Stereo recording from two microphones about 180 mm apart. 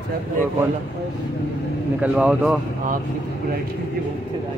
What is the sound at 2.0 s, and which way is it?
Speech, 5° right (ahead or behind).